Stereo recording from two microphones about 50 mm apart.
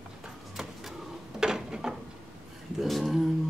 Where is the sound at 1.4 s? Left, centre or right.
Centre.